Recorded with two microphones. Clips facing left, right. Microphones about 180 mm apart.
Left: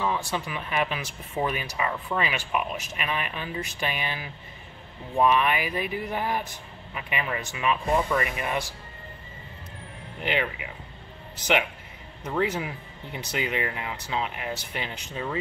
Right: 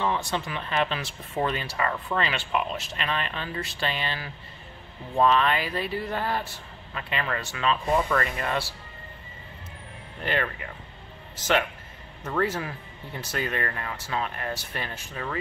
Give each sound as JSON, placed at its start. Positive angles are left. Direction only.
{"t": 0.3, "sound": "speech", "side_deg": 10}
{"t": 10.2, "sound": "speech", "side_deg": 15}